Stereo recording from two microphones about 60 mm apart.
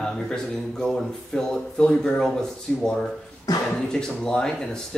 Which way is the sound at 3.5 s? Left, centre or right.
Left.